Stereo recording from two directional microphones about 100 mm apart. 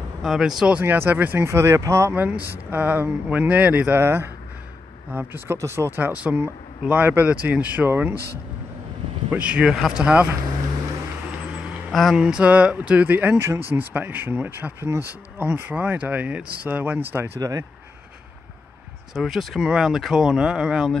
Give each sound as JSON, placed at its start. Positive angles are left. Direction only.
{"t": 0.2, "sound": "speech", "side_deg": -5}
{"t": 2.1, "sound": "speech", "side_deg": -15}
{"t": 9.3, "sound": "speech", "side_deg": -10}
{"t": 11.9, "sound": "speech", "side_deg": 0}
{"t": 12.2, "sound": "speech", "side_deg": -10}
{"t": 17.4, "sound": "speech", "side_deg": -35}
{"t": 19.1, "sound": "speech", "side_deg": 0}